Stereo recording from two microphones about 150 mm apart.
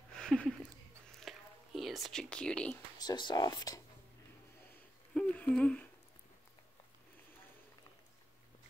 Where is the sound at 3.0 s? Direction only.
30° left (ahead or behind).